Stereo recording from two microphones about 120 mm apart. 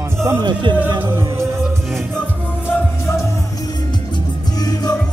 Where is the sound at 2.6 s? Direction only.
25° left (ahead or behind).